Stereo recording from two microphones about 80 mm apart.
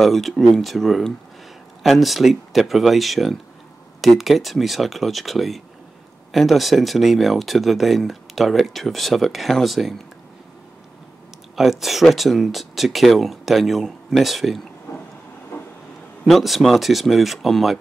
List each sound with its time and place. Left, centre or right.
0.0 s speech: centre
11.5 s speech: centre
15.5 s vehicle: left
16.3 s speech: centre